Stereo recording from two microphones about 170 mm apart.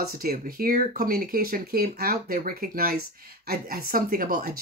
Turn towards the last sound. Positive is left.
turn(degrees=-55)  # may be behind; listen again after turning